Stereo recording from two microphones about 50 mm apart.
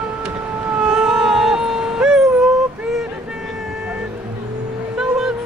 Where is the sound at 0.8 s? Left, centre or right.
Centre.